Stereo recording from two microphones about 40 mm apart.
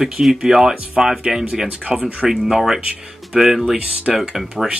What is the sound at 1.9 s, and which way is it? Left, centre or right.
Speech, right.